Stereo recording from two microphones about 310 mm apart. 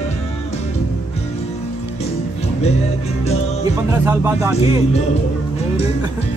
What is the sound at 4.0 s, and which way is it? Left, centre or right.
Speech, centre.